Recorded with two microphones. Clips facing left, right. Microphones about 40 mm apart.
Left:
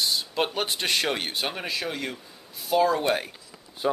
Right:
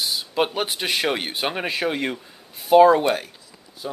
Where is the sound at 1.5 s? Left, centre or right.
Right.